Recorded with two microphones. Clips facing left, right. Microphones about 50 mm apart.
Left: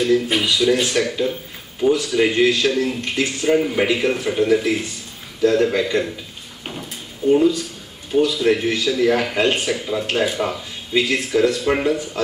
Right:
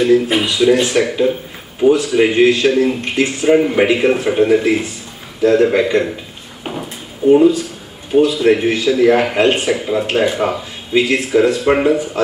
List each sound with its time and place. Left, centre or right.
0.0 s speech: centre
7.2 s speech: centre